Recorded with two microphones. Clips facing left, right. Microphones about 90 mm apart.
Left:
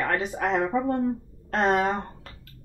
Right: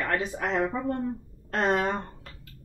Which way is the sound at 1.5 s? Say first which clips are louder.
Left 3 dB; 35° left (ahead or behind).